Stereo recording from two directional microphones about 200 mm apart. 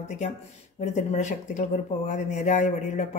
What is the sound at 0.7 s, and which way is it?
A woman's voice, 35° left (ahead or behind).